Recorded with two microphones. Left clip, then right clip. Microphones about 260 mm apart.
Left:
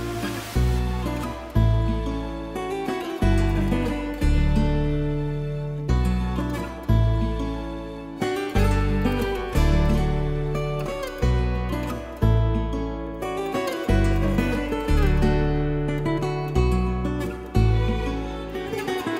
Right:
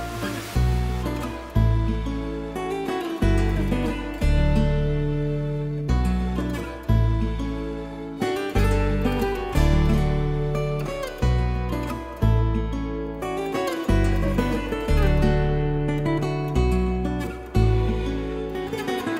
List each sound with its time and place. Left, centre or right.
3.2 s music: right
14.3 s music: centre
15.9 s music: left